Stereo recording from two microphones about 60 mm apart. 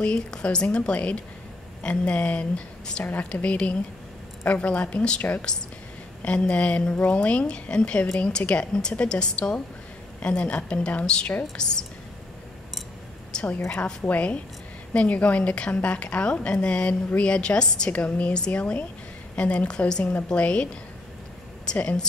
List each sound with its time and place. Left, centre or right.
0.0 s a woman's voice: centre
13.3 s a sound: centre
13.7 s a woman's voice: left